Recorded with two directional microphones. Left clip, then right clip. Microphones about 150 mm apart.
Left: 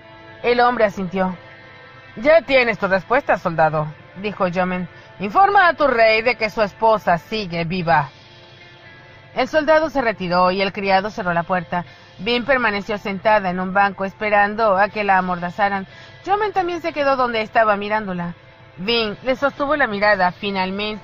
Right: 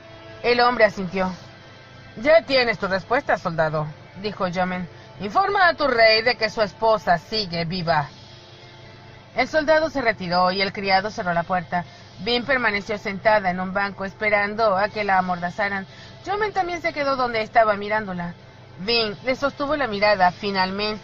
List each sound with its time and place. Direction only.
0.4 s speech: 10° left (ahead or behind); by 8.1 s 30° left (ahead or behind)
9.3 s a man's voice: 35° left (ahead or behind); by 20.8 s 15° left (ahead or behind)